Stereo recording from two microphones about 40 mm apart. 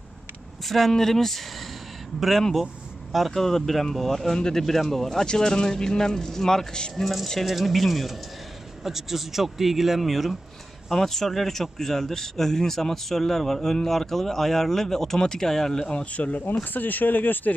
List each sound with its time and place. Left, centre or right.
0.7 s a man's voice: centre
4.6 s a man's voice: centre
5.2 s speech: centre
7.4 s a man's voice: centre; by 16.2 s left
16.2 s speech: left
16.7 s speech: left